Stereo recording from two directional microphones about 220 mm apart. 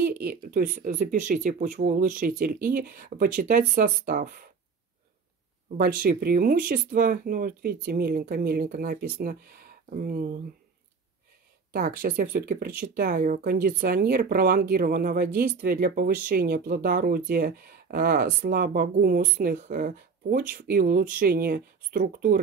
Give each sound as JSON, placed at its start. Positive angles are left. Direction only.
{"t": 0.0, "sound": "speech", "side_deg": -45}
{"t": 5.8, "sound": "speech", "side_deg": -40}
{"t": 11.7, "sound": "speech", "side_deg": -40}